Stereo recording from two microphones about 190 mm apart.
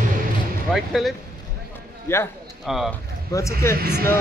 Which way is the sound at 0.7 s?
Centre (ahead or behind).